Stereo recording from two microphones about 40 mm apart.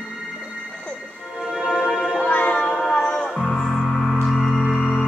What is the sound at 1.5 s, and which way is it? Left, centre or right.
Music, right.